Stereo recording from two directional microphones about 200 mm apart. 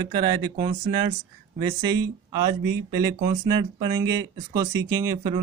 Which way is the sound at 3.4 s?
20° right (ahead or behind).